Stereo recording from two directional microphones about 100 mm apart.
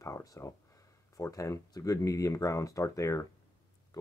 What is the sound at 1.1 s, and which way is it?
Speech, 30° left (ahead or behind).